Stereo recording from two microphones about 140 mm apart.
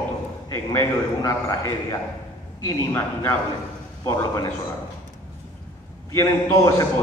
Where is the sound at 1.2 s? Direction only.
25° left (ahead or behind).